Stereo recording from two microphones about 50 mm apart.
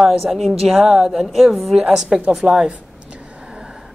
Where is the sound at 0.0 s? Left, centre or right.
Centre.